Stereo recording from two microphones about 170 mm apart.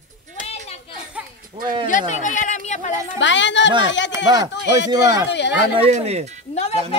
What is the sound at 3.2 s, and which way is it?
Speech, 90° left.